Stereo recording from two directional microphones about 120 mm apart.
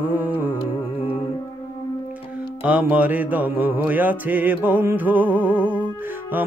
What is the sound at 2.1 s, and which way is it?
Music, 10° right (ahead or behind).